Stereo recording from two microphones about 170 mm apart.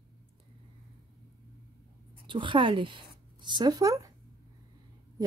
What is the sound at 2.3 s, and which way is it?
A woman's voice, 30° right (ahead or behind).